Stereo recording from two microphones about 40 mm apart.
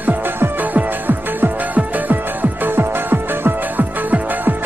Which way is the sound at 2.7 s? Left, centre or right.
Right.